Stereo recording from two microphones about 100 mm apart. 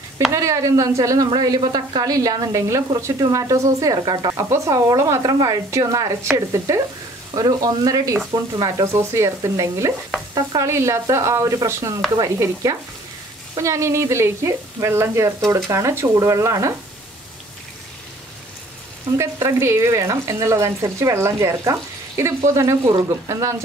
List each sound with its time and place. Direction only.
0.3 s speech: 30° right (ahead or behind)
10.7 s speech: 30° right (ahead or behind)
13.6 s frying: 30° right (ahead or behind)
19.1 s speech: 30° right (ahead or behind)